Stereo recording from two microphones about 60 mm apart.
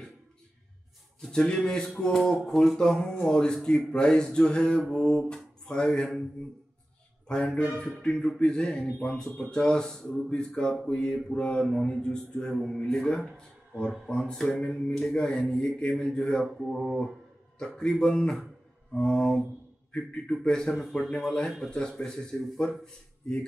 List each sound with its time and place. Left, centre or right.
1.2 s a man's voice: centre
7.3 s a man's voice: centre
19.9 s a man's voice: centre
20.7 s a man's voice: centre
21.1 s a man's voice: centre